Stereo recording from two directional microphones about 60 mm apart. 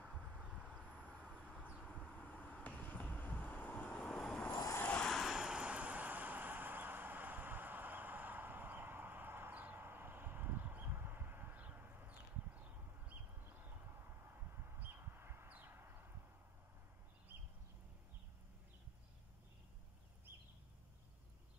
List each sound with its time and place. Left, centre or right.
0.0 s vehicle: centre
1.9 s vehicle: centre
2.6 s vehicle: left
3.9 s vehicle: centre
5.2 s vehicle: centre; by 13.2 s right
13.4 s a sound: right